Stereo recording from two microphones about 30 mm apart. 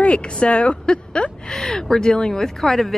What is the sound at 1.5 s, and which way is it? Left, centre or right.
Speech, centre.